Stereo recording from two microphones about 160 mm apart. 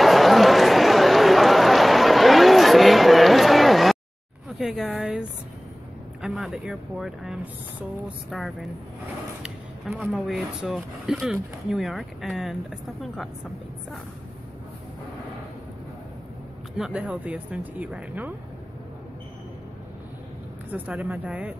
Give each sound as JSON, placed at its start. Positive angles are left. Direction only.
{"t": 0.0, "sound": "run", "side_deg": 0}
{"t": 4.6, "sound": "speech", "side_deg": 0}
{"t": 6.2, "sound": "speech", "side_deg": -5}
{"t": 9.4, "sound": "a sound", "side_deg": -5}
{"t": 10.1, "sound": "speech", "side_deg": 0}
{"t": 16.7, "sound": "speech", "side_deg": -5}
{"t": 20.7, "sound": "speech", "side_deg": -10}